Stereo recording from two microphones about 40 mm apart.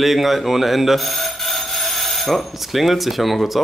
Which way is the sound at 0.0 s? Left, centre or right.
Centre.